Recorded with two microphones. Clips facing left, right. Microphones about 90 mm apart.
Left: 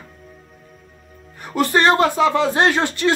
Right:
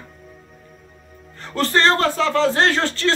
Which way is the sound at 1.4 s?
15° left (ahead or behind).